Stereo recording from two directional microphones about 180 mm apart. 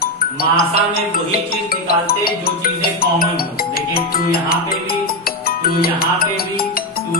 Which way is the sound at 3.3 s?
55° left (ahead or behind).